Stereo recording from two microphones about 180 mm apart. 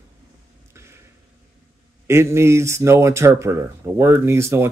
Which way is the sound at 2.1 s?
15° right (ahead or behind).